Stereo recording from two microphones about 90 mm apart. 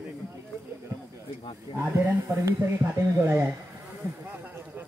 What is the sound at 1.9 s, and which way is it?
Speech, 25° right (ahead or behind).